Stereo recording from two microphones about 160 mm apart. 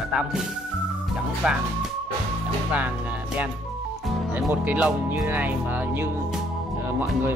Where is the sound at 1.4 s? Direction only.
5° right (ahead or behind).